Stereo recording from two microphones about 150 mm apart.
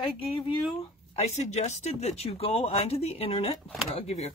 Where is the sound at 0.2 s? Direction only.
35° left (ahead or behind).